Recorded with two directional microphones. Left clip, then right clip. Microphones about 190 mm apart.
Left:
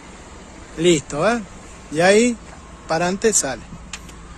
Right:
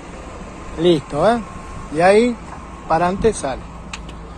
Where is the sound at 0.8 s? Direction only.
50° left (ahead or behind).